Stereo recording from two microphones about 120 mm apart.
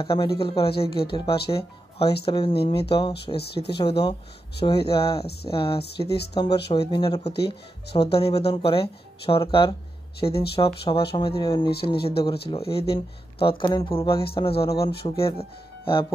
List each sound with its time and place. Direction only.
0.0 s speech: 45° left (ahead or behind)
7.9 s speech: 55° left (ahead or behind)